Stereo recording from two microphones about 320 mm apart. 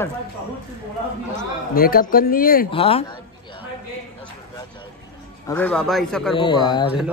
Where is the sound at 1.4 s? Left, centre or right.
Left.